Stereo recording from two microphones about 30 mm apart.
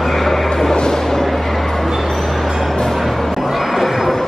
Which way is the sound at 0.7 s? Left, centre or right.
Left.